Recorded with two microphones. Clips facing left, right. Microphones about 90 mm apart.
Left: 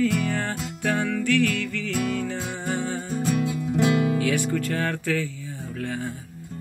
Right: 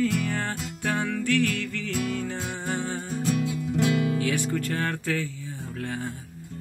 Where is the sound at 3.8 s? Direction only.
20° left (ahead or behind).